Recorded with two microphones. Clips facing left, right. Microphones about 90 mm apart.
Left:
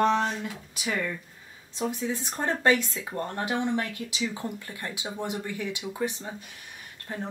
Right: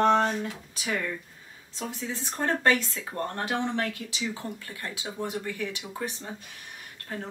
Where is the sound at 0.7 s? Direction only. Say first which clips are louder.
Left 2 dB; 15° left (ahead or behind).